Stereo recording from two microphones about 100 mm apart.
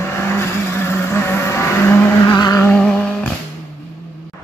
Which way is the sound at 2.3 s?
40° left (ahead or behind).